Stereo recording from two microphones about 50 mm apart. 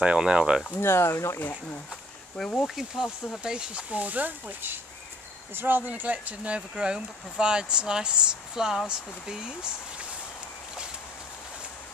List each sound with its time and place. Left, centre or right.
0.0 s speech: centre
0.7 s speech: left
1.4 s speech: left
2.6 s speech: centre
3.5 s speech: centre
3.9 s speech: right
6.7 s speech: centre